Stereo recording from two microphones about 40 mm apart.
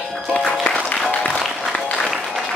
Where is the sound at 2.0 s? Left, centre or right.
Centre.